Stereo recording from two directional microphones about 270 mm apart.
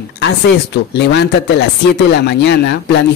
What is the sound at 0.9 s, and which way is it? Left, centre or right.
Speech, left.